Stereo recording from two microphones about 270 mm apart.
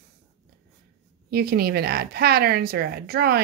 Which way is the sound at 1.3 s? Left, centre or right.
Right.